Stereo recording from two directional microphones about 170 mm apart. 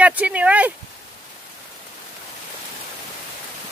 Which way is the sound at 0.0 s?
10° right (ahead or behind).